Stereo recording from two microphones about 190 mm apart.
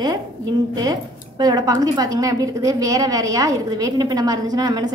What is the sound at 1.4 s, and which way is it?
A woman's voice, 20° right (ahead or behind).